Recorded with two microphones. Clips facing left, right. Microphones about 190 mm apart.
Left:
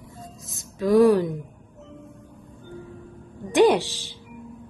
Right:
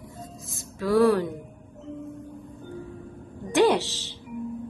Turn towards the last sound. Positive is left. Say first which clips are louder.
# left 3 dB
turn(degrees=10)  # may be behind; listen again after turning